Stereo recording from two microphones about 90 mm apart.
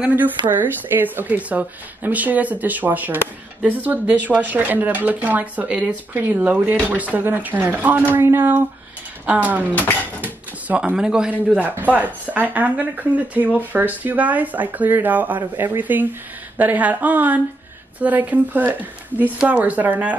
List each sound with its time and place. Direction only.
0.5 s speech: 20° right (ahead or behind)